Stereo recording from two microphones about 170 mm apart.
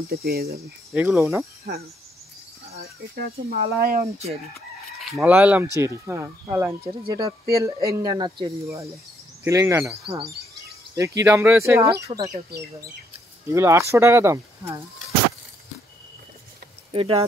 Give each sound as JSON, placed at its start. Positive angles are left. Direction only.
{"t": 0.1, "sound": "speech", "side_deg": -65}
{"t": 0.9, "sound": "speech", "side_deg": -10}
{"t": 2.8, "sound": "speech", "side_deg": -65}
{"t": 5.1, "sound": "speech", "side_deg": -10}
{"t": 11.0, "sound": "speech", "side_deg": -15}
{"t": 12.4, "sound": "speech", "side_deg": -70}
{"t": 13.5, "sound": "speech", "side_deg": -15}
{"t": 16.9, "sound": "speech", "side_deg": -35}